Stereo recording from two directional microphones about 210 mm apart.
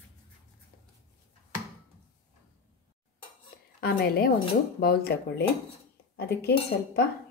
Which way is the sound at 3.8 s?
45° left (ahead or behind).